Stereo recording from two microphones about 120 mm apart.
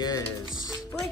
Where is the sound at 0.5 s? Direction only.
35° left (ahead or behind).